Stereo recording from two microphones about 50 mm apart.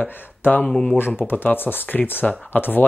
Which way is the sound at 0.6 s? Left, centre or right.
Centre.